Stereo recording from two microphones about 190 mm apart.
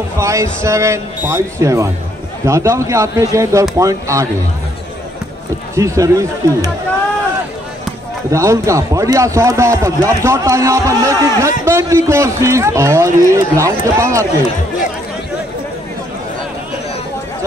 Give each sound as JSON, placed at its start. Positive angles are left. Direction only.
{"t": 0.2, "sound": "speech", "side_deg": -15}
{"t": 5.8, "sound": "speech", "side_deg": -15}
{"t": 8.3, "sound": "speech", "side_deg": -15}